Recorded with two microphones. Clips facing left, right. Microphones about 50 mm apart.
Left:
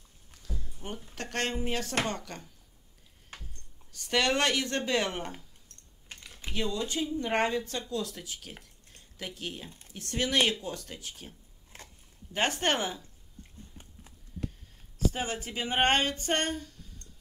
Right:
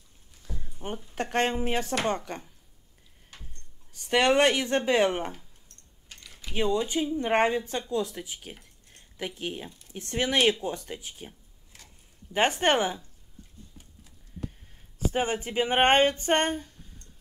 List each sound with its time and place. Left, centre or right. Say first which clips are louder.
0.4 s a sound: right 3 dB; right
1.1 s speech: right 6 dB; right
3.9 s speech: right 5 dB; right
6.0 s typing: left 2 dB; left
6.5 s speech: right 6 dB; right
11.7 s a sound: left 4 dB; left
12.3 s speech: right 5 dB; centre
15.1 s speech: right 7 dB; right